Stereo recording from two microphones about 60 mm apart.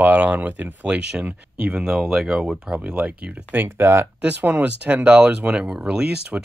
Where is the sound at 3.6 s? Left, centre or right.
Right.